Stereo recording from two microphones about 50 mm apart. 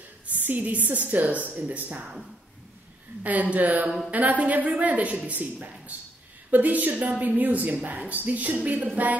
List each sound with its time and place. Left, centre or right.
0.3 s speech: right
3.3 s speech: right